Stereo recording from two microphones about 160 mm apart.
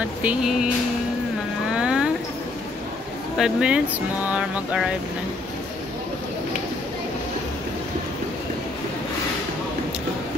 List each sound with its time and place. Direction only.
0.2 s music: 5° right (ahead or behind)
1.7 s a sound: 5° right (ahead or behind)
3.3 s music: 5° right (ahead or behind)